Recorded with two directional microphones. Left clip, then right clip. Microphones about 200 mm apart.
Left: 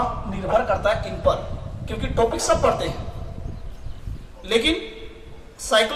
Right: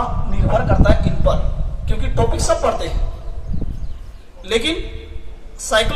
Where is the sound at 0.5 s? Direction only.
10° left (ahead or behind).